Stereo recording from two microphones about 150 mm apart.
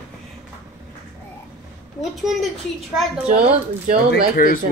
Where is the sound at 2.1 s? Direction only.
Centre (ahead or behind).